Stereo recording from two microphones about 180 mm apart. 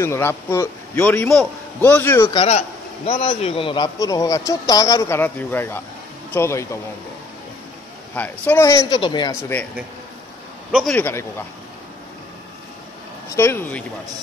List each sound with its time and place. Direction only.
0.0 s a man's voice: 15° left (ahead or behind)
2.3 s a man's voice: 35° left (ahead or behind); by 6.8 s 15° left (ahead or behind)
8.1 s a man's voice: 10° left (ahead or behind)
10.7 s a man's voice: centre (ahead or behind)
11.0 s a man's voice: 15° left (ahead or behind)
13.4 s a man's voice: 15° left (ahead or behind)